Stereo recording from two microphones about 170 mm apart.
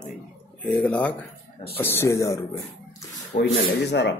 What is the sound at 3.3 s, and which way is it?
Speech, 75° left (ahead or behind).